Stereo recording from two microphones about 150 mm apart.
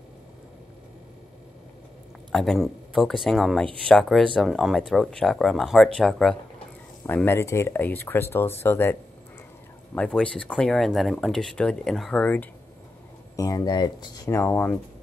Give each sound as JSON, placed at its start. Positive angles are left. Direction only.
{"t": 2.3, "sound": "speech", "side_deg": 0}
{"t": 7.1, "sound": "speech", "side_deg": 15}
{"t": 9.9, "sound": "speech", "side_deg": 5}
{"t": 13.4, "sound": "speech", "side_deg": 25}
{"t": 14.4, "sound": "speech", "side_deg": 15}